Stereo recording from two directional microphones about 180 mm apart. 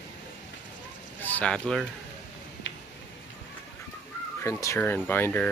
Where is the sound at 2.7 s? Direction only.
90° left.